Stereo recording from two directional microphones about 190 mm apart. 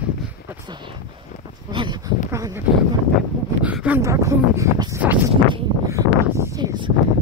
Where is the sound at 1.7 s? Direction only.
25° right (ahead or behind).